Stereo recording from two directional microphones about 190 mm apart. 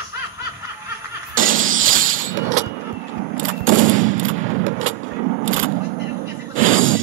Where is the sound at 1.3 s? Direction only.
90° right.